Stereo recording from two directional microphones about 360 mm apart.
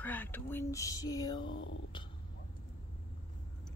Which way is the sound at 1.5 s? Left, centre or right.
Left.